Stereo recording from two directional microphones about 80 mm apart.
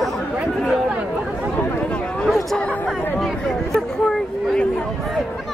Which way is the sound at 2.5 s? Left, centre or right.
Centre.